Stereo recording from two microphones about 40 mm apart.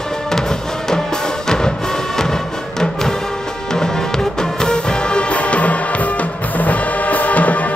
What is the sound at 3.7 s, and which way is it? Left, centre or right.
Music, centre.